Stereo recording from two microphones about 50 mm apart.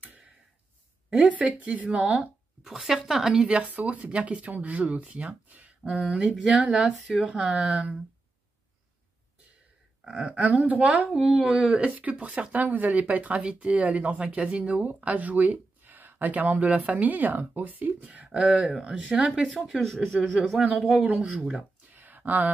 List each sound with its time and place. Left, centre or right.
1.1 s speech: right
2.6 s speech: centre
3.4 s speech: right
6.2 s speech: centre
10.0 s speech: right
11.1 s speech: centre
11.4 s speech: right
18.3 s speech: centre
18.9 s speech: right
19.4 s speech: centre
20.8 s speech: centre
21.9 s a sound: right